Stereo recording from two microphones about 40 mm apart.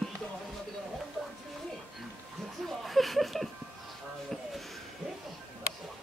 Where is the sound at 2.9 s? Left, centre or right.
Centre.